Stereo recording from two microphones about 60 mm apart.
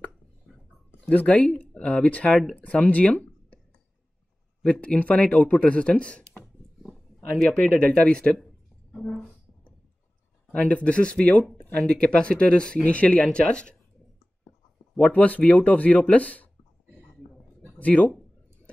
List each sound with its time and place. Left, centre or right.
1.0 s speech: left
4.6 s a woman's voice: left
10.7 s speech: left
15.0 s speech: left
17.7 s speech: left